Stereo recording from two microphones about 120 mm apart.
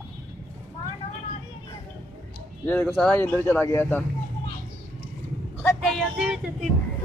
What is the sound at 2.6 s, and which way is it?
Speech, 10° left (ahead or behind).